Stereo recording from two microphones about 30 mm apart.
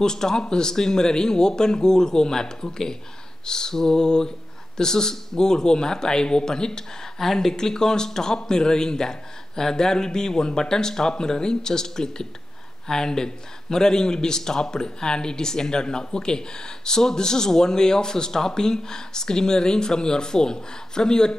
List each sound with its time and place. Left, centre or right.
0.0 s speech: left